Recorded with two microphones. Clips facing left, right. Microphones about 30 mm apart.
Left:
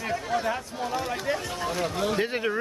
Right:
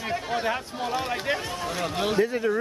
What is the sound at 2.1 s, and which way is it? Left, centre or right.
Speech, left.